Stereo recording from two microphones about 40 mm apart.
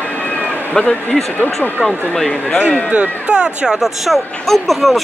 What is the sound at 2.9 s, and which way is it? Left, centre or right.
Speech, right.